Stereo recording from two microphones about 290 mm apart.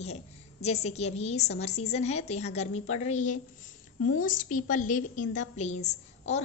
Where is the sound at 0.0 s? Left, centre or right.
Left.